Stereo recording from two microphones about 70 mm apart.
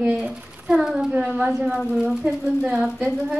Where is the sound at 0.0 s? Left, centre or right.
Centre.